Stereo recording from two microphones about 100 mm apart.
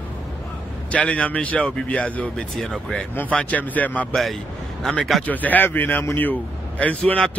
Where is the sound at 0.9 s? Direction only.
15° left (ahead or behind).